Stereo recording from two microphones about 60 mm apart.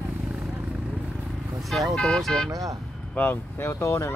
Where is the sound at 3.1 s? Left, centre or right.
Left.